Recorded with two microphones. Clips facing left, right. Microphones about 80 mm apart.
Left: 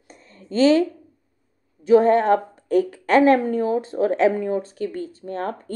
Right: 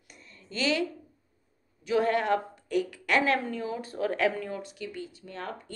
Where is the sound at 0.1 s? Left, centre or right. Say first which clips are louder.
Left 13 dB; left.